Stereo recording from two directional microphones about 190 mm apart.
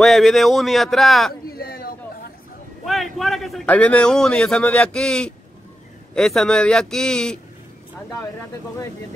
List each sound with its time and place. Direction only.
0.0 s a man's voice: centre (ahead or behind)
1.6 s chatter: 50° left (ahead or behind)
2.8 s a man's voice: centre (ahead or behind)